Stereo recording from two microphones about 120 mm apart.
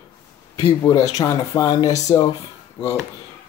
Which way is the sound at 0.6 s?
30° left (ahead or behind).